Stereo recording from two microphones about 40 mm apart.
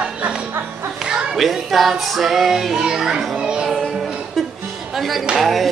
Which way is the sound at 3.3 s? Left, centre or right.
Right.